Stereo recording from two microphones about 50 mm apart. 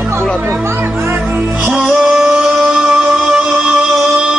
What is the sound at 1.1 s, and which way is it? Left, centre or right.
Music, right.